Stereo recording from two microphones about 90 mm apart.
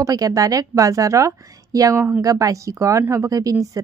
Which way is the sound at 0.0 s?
40° right (ahead or behind).